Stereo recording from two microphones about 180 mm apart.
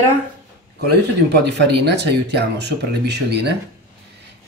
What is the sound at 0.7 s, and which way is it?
Speech, 65° right (ahead or behind).